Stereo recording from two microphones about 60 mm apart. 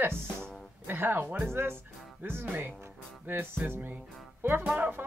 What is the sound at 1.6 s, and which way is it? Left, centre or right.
Speech, right.